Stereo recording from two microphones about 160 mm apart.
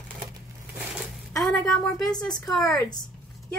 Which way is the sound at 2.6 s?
20° left (ahead or behind).